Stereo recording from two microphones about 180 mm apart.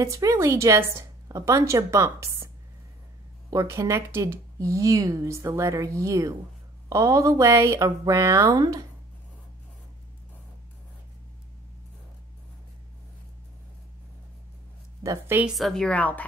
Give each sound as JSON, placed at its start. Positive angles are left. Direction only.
{"t": 0.0, "sound": "speech", "side_deg": -20}
{"t": 15.0, "sound": "speech", "side_deg": -10}
{"t": 15.5, "sound": "a woman's voice", "side_deg": 0}